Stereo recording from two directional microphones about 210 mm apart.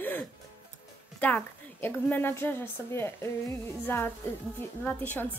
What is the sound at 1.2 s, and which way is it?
A woman's voice, 10° left (ahead or behind).